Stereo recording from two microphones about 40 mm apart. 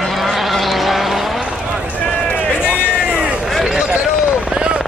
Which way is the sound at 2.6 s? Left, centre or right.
Right.